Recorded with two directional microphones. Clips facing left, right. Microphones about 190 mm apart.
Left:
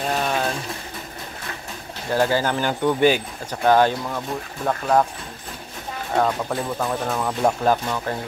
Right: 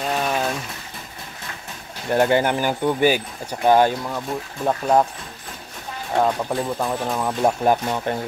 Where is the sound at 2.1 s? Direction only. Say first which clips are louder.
Right 2 dB; 20° right (ahead or behind).